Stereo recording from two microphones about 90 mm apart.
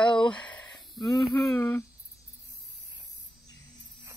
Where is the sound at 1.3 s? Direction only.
30° left (ahead or behind).